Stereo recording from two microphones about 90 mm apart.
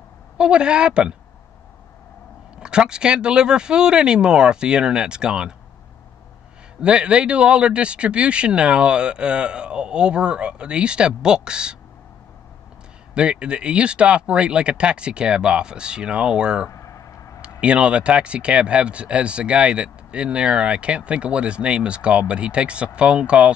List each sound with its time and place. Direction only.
0.4 s speech: 10° right (ahead or behind)
2.5 s speech: 10° right (ahead or behind)
6.8 s speech: 10° right (ahead or behind)
13.1 s speech: 10° right (ahead or behind)
16.6 s vehicle: 35° left (ahead or behind)
17.4 s speech: 10° right (ahead or behind)